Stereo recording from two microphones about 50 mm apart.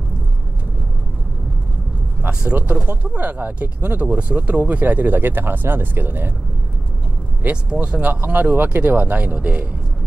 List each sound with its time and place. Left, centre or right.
2.4 s speech: right
7.7 s speech: right
8.0 s speech: right